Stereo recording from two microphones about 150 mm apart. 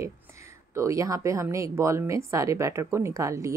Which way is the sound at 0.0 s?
20° right (ahead or behind).